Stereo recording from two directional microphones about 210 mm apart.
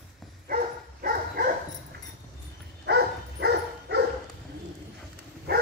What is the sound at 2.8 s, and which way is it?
Dog, 50° right (ahead or behind).